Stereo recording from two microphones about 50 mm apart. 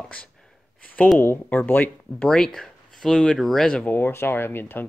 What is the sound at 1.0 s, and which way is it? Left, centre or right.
Speech, left.